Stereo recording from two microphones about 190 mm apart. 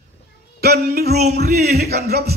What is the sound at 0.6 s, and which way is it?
Speech, 55° right (ahead or behind).